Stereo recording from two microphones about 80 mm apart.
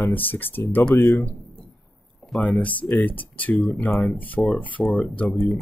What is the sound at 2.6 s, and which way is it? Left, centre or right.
Speech, centre.